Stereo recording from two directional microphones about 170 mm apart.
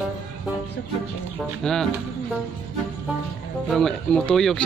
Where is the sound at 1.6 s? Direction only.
5° left (ahead or behind).